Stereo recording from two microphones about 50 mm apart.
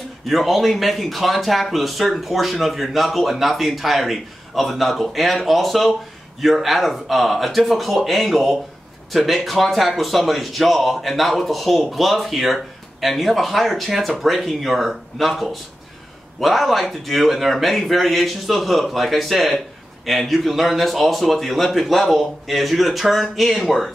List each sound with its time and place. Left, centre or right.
0.3 s speech: centre